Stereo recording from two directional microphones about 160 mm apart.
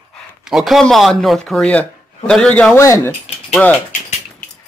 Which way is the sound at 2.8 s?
20° left (ahead or behind).